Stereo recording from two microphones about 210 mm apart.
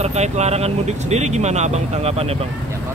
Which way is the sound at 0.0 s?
30° right (ahead or behind).